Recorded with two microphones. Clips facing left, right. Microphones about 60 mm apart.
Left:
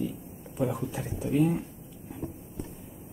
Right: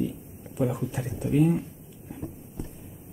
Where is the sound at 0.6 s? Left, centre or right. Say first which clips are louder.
Right 2 dB; centre.